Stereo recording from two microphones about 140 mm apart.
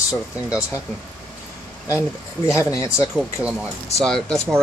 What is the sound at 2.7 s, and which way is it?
Speech, 20° left (ahead or behind).